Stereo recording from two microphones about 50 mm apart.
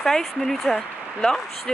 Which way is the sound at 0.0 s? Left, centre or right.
Centre.